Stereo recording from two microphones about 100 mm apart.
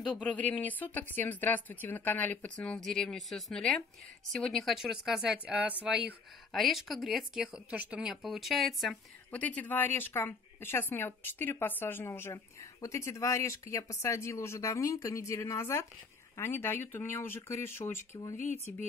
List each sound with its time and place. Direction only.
0.2 s speech: 15° left (ahead or behind); by 6.1 s 10° right (ahead or behind)
6.5 s speech: centre (ahead or behind)
9.3 s speech: 15° left (ahead or behind)